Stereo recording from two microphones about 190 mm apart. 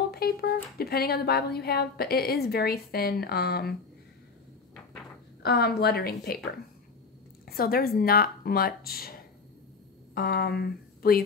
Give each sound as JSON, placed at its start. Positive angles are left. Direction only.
{"t": 0.1, "sound": "speech", "side_deg": 55}
{"t": 5.4, "sound": "speech", "side_deg": 55}
{"t": 7.4, "sound": "a woman's voice", "side_deg": 50}